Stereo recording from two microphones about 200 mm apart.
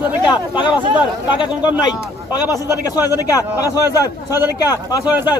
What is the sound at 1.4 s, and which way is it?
A man's voice, 20° left (ahead or behind).